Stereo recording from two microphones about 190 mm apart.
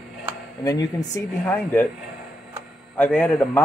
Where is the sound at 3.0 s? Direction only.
5° left (ahead or behind).